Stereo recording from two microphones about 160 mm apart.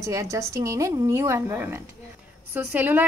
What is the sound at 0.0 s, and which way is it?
A woman's voice, 20° right (ahead or behind).